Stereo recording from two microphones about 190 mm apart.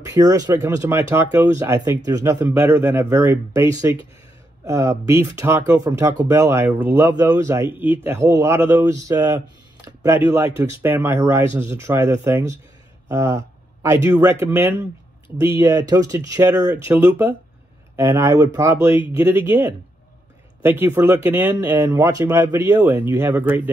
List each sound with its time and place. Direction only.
0.0 s speech: 20° right (ahead or behind)